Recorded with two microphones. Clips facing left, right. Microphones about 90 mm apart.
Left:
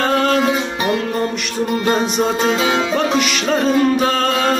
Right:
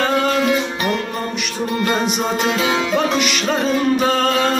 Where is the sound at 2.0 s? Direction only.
Centre (ahead or behind).